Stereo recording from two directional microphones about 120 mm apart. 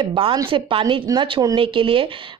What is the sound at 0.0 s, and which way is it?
Speech, 40° right (ahead or behind).